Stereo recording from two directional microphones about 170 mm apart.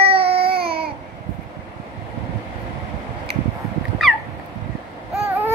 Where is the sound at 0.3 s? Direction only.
35° right (ahead or behind).